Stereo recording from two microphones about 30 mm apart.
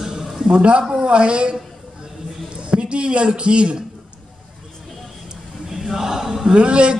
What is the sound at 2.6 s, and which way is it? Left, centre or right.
A man's voice, right.